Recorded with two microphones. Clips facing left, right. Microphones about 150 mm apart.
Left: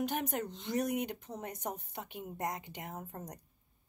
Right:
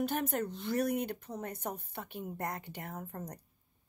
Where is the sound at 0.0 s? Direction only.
15° left (ahead or behind).